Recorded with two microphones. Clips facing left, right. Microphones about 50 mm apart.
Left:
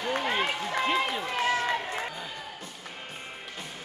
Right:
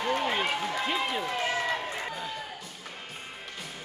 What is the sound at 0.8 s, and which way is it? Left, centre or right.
Speech, centre.